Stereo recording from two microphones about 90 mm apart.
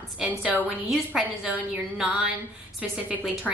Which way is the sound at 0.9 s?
5° right (ahead or behind).